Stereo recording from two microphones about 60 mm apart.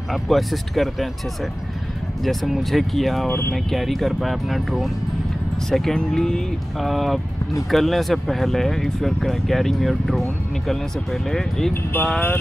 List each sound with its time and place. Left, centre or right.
0.1 s speech: centre
3.3 s speech: left
3.5 s speech: centre
11.7 s speech: left